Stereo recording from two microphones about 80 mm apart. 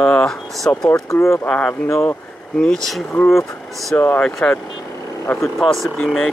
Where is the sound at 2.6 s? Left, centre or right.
Centre.